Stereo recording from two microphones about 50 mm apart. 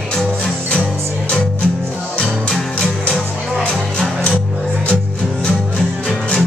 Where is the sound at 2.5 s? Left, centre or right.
Centre.